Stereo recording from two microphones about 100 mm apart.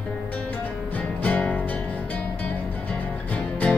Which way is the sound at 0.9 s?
15° left (ahead or behind).